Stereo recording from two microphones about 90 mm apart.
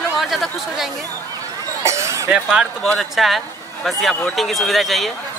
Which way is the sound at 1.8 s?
35° right (ahead or behind).